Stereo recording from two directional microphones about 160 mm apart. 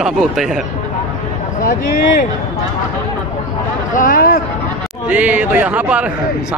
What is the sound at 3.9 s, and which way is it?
Speech, 60° left (ahead or behind).